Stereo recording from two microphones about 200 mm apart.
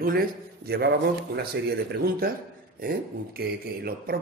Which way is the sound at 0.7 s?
55° right (ahead or behind).